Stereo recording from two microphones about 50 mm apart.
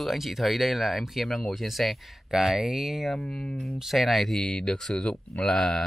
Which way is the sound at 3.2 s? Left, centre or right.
Left.